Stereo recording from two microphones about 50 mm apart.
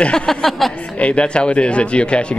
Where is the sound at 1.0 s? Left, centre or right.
Left.